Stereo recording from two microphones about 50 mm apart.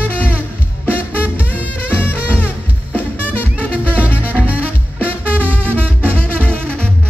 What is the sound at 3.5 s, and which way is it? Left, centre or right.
Music, right.